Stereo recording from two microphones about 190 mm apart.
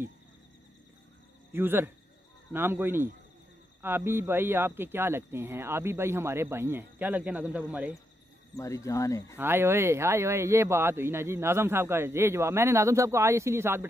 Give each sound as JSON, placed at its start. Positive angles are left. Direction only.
{"t": 1.5, "sound": "speech", "side_deg": -10}
{"t": 8.5, "sound": "speech", "side_deg": 15}
{"t": 9.4, "sound": "speech", "side_deg": -10}